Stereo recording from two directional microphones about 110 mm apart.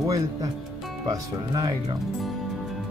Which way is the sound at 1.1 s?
35° right (ahead or behind).